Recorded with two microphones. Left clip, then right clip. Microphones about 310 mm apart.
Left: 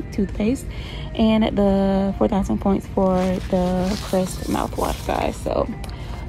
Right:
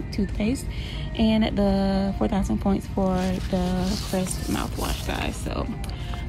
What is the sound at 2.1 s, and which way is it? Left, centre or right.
Speech, left.